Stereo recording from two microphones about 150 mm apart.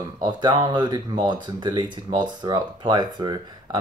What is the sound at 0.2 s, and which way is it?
Speech, 30° right (ahead or behind).